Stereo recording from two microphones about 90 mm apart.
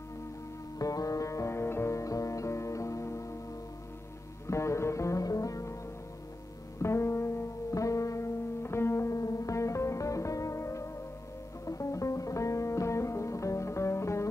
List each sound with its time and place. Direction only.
0.7 s music: 40° left (ahead or behind)
4.5 s music: 30° left (ahead or behind)
6.8 s music: 30° left (ahead or behind)